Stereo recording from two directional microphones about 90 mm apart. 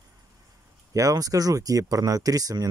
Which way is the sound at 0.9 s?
40° right (ahead or behind).